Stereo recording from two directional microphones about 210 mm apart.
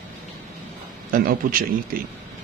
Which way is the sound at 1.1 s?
40° right (ahead or behind).